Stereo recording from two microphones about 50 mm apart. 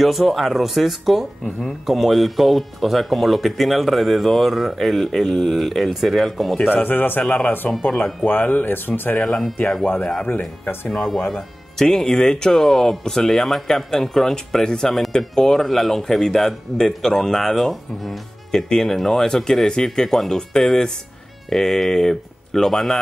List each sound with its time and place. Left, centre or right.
0.0 s speech: centre
6.6 s speech: left
7.2 s speech: left
8.3 s speech: left
10.9 s speech: centre